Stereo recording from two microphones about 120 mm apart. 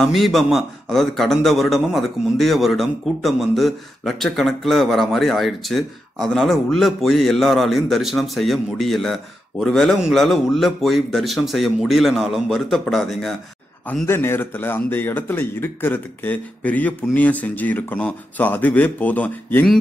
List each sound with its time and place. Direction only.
0.0 s a man's voice: centre (ahead or behind)
14.0 s speech: 20° left (ahead or behind)